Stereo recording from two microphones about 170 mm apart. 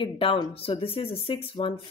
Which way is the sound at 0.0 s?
30° left (ahead or behind).